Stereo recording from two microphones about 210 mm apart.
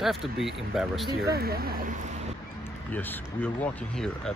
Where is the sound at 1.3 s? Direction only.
50° right (ahead or behind).